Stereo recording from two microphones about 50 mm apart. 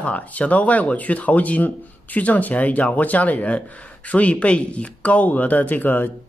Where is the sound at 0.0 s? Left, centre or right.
Left.